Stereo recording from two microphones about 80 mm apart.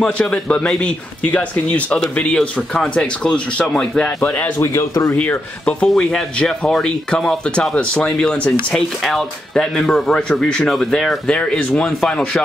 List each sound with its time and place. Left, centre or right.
0.0 s speech: centre
4.6 s speech: left
5.1 s speech: centre